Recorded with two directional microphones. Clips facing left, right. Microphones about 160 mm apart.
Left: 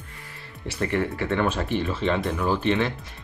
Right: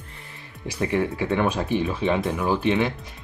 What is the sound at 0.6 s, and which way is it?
Speech, 10° right (ahead or behind).